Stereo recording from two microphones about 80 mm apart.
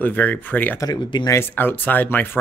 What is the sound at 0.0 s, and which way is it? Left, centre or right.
Speech, left.